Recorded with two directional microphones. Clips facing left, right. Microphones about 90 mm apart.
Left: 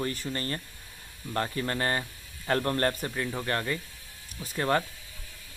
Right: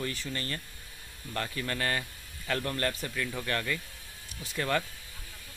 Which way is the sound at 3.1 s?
25° left (ahead or behind).